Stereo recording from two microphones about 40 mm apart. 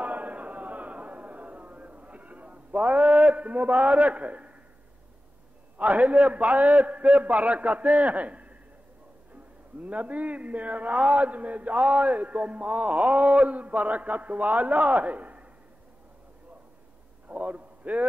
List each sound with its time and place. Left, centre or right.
0.0 s a sound: right
5.8 s a man's voice: right
17.3 s a man's voice: right